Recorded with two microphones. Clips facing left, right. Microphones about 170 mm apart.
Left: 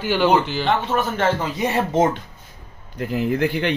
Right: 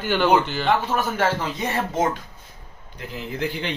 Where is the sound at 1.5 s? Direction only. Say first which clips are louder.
Left 5 dB; 15° left (ahead or behind).